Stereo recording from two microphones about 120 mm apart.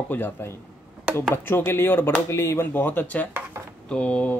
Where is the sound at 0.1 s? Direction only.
20° left (ahead or behind).